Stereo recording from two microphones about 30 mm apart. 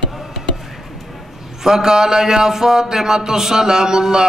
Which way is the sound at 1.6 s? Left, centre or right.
Centre.